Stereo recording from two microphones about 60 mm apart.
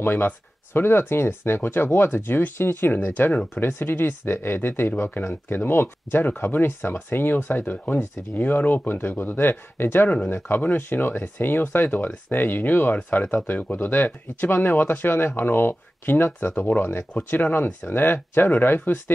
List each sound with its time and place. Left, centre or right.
0.0 s speech: left
10.0 s speech: left